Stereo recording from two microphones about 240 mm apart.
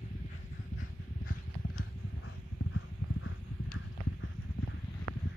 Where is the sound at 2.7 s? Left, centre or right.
Left.